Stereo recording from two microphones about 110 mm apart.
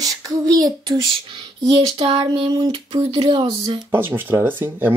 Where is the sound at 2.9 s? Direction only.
55° right (ahead or behind).